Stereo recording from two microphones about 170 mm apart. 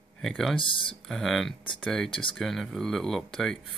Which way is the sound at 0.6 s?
30° left (ahead or behind).